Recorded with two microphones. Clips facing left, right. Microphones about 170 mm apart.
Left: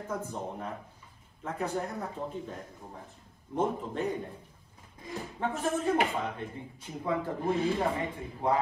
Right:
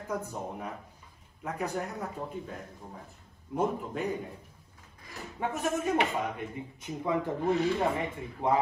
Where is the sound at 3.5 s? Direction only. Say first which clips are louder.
Even; 10° right (ahead or behind).